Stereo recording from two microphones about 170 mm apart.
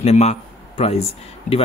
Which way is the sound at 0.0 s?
40° left (ahead or behind).